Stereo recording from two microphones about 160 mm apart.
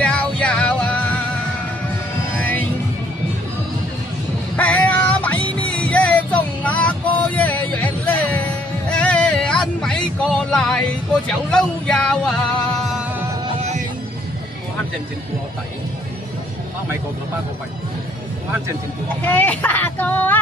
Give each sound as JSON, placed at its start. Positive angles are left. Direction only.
{"t": 0.0, "sound": "music", "side_deg": 10}
{"t": 2.3, "sound": "music", "side_deg": 10}
{"t": 4.6, "sound": "music", "side_deg": 10}
{"t": 13.6, "sound": "music", "side_deg": -45}
{"t": 19.2, "sound": "speech", "side_deg": 10}